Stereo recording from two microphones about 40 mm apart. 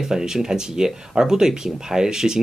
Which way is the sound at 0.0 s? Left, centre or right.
Centre.